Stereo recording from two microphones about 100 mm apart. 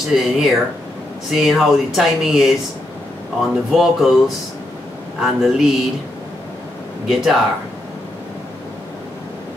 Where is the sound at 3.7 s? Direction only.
5° right (ahead or behind).